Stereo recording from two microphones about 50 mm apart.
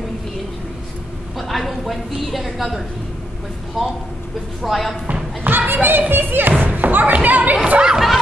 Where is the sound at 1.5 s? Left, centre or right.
Centre.